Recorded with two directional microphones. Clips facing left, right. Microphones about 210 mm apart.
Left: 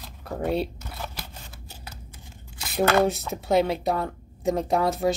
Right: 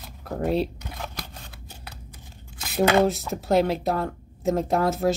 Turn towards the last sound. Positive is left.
turn(degrees=0)  # may be behind; listen again after turning